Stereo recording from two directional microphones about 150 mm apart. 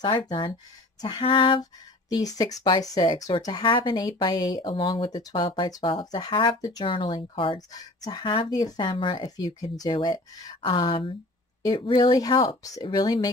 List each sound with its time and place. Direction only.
0.0 s speech: 30° left (ahead or behind)